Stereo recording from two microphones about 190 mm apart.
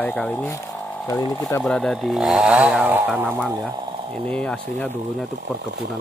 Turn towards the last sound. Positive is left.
turn(degrees=5)  # may be behind; listen again after turning